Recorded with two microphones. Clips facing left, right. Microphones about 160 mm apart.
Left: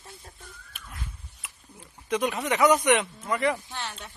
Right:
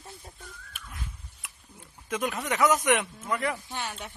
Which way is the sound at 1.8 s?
Centre (ahead or behind).